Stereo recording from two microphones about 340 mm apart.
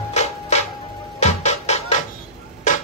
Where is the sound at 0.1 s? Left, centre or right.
Centre.